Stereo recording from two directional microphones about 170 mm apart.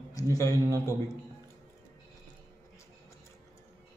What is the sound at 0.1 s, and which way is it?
Speech, 20° left (ahead or behind).